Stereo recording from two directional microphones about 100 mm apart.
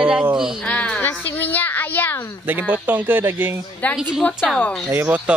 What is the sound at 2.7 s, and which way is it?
Speech, 15° right (ahead or behind).